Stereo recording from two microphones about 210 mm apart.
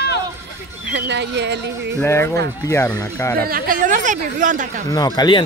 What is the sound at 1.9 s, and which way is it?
Speech, 10° left (ahead or behind).